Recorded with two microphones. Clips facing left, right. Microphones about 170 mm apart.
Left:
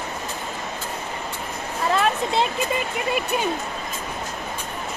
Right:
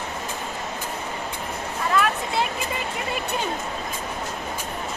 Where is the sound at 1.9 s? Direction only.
25° left (ahead or behind).